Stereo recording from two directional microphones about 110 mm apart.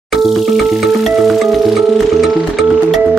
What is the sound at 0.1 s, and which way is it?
Music, centre (ahead or behind).